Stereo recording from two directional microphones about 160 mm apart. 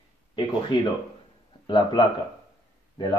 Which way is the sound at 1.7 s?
30° left (ahead or behind).